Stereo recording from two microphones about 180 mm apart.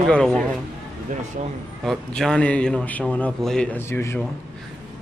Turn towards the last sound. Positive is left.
turn(degrees=15)  # may be behind; listen again after turning